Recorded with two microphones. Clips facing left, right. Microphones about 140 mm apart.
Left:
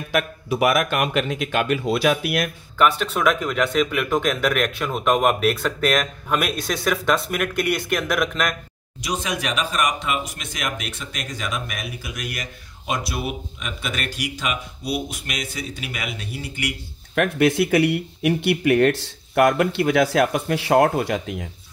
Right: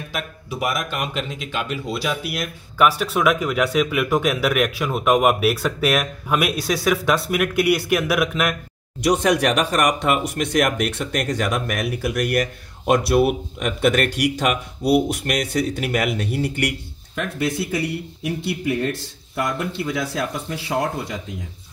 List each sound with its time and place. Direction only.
0.1 s speech: 65° left (ahead or behind)
2.8 s speech: 5° right (ahead or behind)
9.0 s speech: 65° right (ahead or behind)
17.1 s speech: 65° left (ahead or behind)